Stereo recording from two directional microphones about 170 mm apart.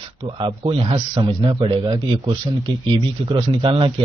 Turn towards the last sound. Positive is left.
turn(degrees=-30)  # may be behind; listen again after turning